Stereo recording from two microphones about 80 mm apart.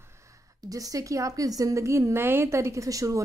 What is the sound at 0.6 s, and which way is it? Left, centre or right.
A woman's voice, right.